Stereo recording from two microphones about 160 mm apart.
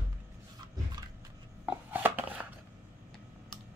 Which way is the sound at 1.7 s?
10° right (ahead or behind).